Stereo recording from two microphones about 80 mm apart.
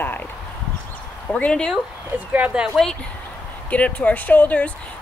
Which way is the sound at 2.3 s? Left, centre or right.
Centre.